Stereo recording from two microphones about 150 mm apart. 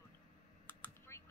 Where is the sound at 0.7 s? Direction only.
15° left (ahead or behind).